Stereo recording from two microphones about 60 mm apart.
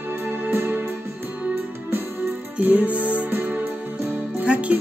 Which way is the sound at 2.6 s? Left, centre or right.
Right.